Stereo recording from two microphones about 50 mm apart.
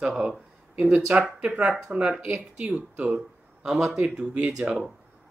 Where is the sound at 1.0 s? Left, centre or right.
Right.